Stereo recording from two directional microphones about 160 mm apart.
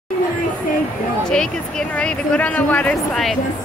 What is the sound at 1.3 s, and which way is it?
A woman's voice, 5° left (ahead or behind).